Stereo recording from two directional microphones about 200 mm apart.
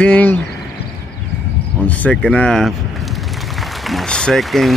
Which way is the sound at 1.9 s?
5° left (ahead or behind).